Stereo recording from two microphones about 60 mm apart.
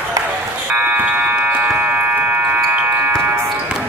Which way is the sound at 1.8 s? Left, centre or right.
Right.